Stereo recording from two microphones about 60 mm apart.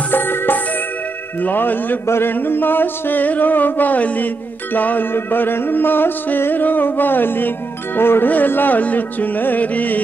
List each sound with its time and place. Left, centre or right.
0.1 s music: left